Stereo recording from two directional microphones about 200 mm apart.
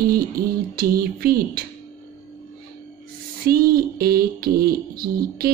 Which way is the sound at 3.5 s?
50° right (ahead or behind).